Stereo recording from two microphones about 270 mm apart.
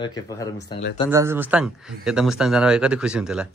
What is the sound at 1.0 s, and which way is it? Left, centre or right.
Speech, centre.